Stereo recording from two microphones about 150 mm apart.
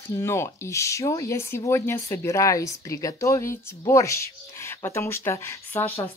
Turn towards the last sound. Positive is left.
turn(degrees=15)  # may be behind; listen again after turning